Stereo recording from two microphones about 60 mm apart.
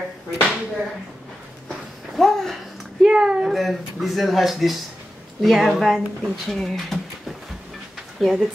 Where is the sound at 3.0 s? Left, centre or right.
Centre.